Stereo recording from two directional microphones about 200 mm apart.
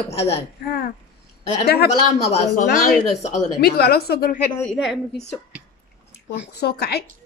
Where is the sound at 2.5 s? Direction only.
45° left (ahead or behind).